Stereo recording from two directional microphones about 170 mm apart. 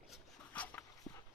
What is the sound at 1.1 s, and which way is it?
Walk, 25° left (ahead or behind).